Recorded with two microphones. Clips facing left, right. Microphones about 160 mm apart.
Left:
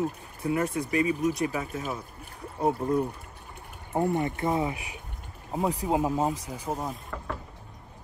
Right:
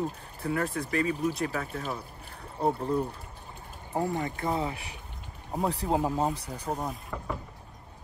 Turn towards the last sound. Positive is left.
turn(degrees=0)  # may be behind; listen again after turning